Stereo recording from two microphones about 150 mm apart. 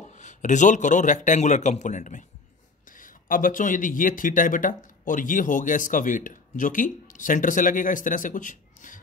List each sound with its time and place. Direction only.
0.1 s speech: 55° left (ahead or behind)